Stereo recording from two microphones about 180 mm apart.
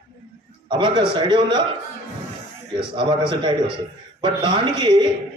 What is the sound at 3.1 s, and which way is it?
A man's voice, 30° right (ahead or behind).